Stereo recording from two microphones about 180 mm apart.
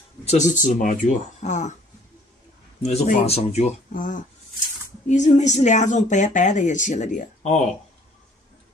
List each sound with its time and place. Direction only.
0.2 s speech: 40° left (ahead or behind)
2.8 s speech: 35° left (ahead or behind)